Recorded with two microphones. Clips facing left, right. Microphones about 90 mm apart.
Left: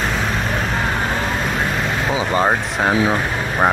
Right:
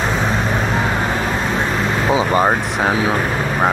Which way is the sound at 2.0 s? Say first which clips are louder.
Right 4 dB; 25° right (ahead or behind).